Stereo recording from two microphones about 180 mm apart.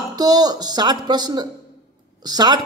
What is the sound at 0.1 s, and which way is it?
Speech, 20° right (ahead or behind).